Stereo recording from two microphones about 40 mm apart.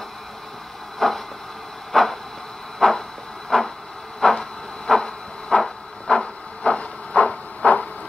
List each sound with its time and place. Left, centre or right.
0.9 s vehicle: centre
1.9 s a sound: centre
6.0 s printer: left